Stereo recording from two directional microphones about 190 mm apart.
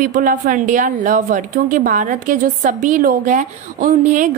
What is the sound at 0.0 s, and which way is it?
A woman's voice, 45° right (ahead or behind).